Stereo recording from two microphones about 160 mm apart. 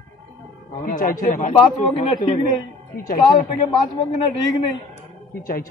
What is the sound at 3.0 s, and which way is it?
Speech, 60° left (ahead or behind).